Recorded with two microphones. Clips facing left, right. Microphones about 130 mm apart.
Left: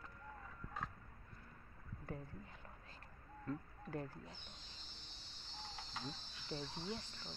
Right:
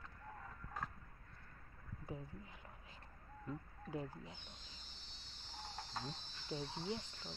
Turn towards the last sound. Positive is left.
turn(degrees=-25)  # may be behind; listen again after turning